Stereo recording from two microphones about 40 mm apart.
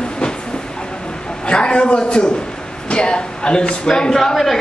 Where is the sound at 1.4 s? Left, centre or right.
Left; by 4.6 s centre.